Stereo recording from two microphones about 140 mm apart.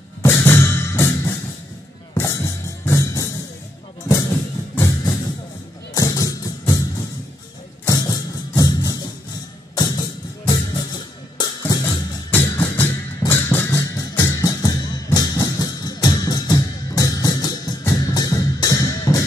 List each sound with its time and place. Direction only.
0.2 s music: 15° left (ahead or behind)
11.8 s music: 15° left (ahead or behind)